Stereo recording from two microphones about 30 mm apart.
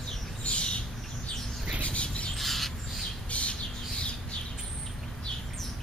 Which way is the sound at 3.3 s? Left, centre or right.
Left.